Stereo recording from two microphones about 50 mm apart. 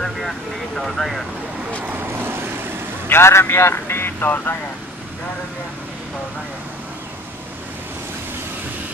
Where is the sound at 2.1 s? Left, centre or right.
Right.